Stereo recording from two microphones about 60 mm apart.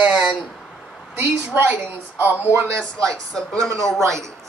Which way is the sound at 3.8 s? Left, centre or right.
Centre.